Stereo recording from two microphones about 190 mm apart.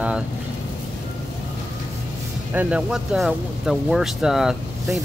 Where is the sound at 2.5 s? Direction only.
5° right (ahead or behind).